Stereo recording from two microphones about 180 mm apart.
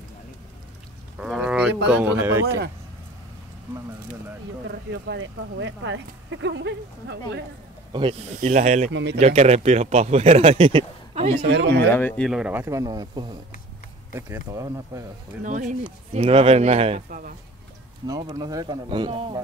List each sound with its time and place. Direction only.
1.2 s livestock: 5° right (ahead or behind)
1.9 s speech: 5° right (ahead or behind)
4.6 s speech: 80° right
7.9 s speech: 25° right (ahead or behind)
8.4 s speech: 40° right (ahead or behind)
8.9 s speech: 75° right (ahead or behind)
9.2 s speech: 35° right (ahead or behind)
11.4 s speech: 70° right (ahead or behind)
11.8 s speech: 10° left (ahead or behind)
12.3 s speech: 5° right (ahead or behind)
15.4 s speech: 45° right (ahead or behind)
18.0 s speech: 20° right (ahead or behind)